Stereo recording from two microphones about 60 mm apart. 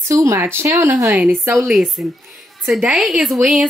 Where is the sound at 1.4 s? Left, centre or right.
Right.